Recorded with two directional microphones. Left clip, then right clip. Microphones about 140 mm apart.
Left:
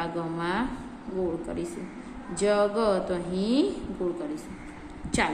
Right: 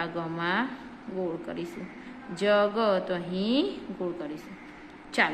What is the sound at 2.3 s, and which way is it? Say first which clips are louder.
A woman's voice: even; 20° right (ahead or behind).